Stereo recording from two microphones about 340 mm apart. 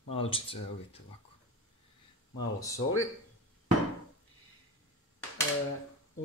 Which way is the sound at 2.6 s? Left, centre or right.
Centre.